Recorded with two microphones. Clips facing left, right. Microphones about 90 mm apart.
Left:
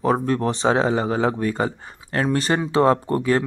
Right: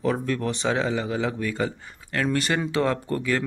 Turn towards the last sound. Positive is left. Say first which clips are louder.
# left 5 dB
turn(degrees=30)  # may be behind; listen again after turning